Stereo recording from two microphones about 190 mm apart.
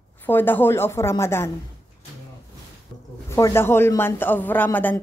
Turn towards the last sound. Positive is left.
turn(degrees=10)  # may be behind; listen again after turning